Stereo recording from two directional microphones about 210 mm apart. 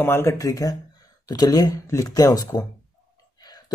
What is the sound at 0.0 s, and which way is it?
Speech, 10° left (ahead or behind).